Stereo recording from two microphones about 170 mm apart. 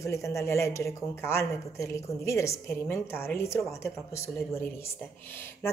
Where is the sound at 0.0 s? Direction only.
15° left (ahead or behind).